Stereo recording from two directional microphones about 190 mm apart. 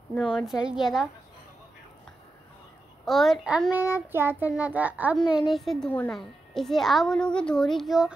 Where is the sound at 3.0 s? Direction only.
Centre (ahead or behind).